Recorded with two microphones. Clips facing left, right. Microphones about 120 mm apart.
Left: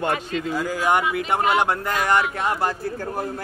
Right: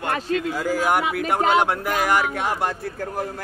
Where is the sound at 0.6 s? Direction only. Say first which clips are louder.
Left 2 dB; 5° right (ahead or behind).